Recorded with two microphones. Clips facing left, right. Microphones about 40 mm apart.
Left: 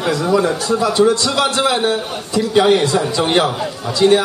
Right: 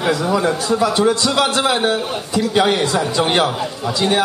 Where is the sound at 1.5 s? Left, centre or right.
Centre.